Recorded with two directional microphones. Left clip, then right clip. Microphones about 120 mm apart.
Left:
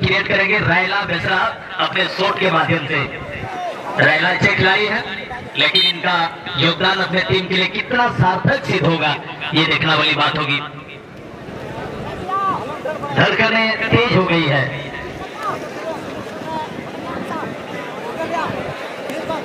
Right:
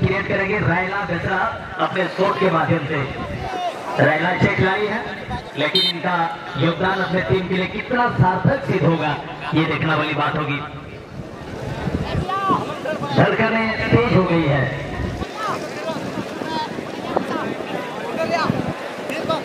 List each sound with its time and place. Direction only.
0.0 s a man's voice: 20° left (ahead or behind)
6.1 s a man's voice: 20° left (ahead or behind)
13.2 s a sound: 20° left (ahead or behind)